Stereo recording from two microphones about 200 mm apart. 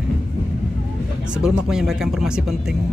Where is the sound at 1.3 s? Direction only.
5° right (ahead or behind).